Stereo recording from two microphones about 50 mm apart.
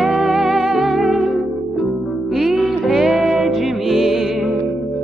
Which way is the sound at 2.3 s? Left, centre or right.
Centre.